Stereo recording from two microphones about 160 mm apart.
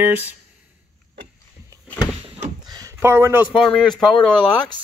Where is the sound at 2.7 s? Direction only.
20° right (ahead or behind).